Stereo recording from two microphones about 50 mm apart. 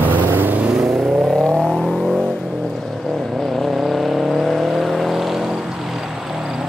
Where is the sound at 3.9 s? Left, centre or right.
Centre.